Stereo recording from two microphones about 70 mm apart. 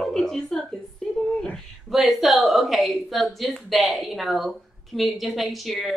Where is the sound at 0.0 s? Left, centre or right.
Centre.